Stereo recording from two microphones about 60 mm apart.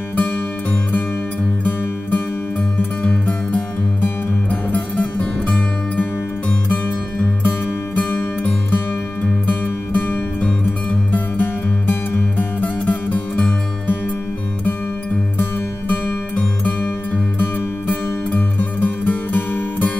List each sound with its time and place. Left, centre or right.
3.0 s music: left
4.7 s music: left
9.9 s music: left
17.4 s music: left